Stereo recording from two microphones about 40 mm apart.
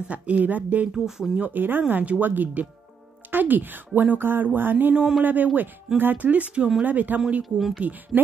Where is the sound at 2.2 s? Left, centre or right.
Right.